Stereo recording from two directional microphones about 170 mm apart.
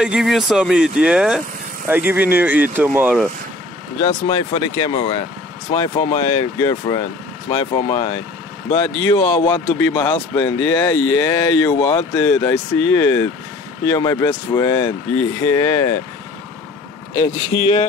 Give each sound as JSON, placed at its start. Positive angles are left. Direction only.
{"t": 0.0, "sound": "speech", "side_deg": -5}
{"t": 4.0, "sound": "speech", "side_deg": 25}
{"t": 6.6, "sound": "speech", "side_deg": 20}
{"t": 8.7, "sound": "speech", "side_deg": 20}
{"t": 17.1, "sound": "speech", "side_deg": 30}